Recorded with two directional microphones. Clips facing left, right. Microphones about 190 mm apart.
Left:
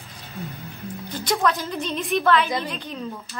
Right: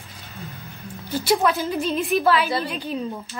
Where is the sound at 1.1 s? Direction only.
10° right (ahead or behind).